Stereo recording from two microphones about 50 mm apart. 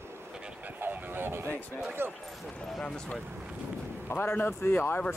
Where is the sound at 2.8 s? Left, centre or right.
Centre.